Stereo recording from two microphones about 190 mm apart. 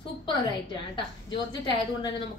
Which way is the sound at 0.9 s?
25° left (ahead or behind).